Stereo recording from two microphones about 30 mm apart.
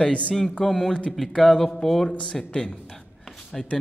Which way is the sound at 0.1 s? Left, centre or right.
Left.